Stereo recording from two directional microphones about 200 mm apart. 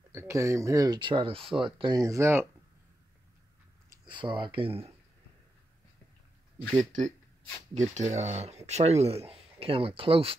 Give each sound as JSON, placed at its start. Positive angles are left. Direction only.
{"t": 0.1, "sound": "speech", "side_deg": -10}
{"t": 3.9, "sound": "speech", "side_deg": -25}
{"t": 7.7, "sound": "speech", "side_deg": -35}